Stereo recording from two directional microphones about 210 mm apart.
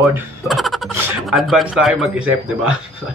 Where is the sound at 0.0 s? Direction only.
Centre (ahead or behind).